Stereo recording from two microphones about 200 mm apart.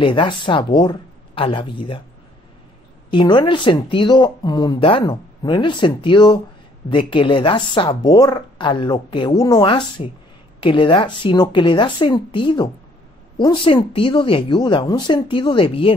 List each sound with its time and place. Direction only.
0.0 s speech: 25° left (ahead or behind)
3.1 s speech: 20° left (ahead or behind)